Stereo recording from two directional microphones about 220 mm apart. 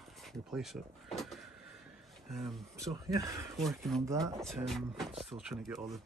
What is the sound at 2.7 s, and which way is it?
Speech, 15° right (ahead or behind).